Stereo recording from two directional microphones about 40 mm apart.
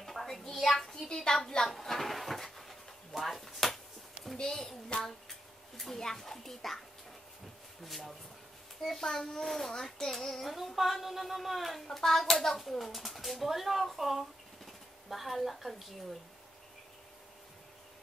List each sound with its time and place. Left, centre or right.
0.0 s a sound: centre
0.6 s a child's voice: centre
1.0 s a child's voice: centre
1.7 s a sound: centre
4.5 s a child's voice: centre
5.8 s a child's voice: centre
7.8 s a child's voice: centre